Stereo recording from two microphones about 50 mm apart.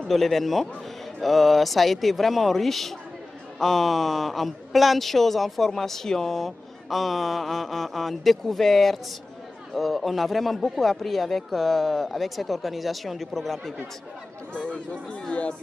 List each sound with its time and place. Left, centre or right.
0.0 s a woman's voice: centre
14.7 s speech: left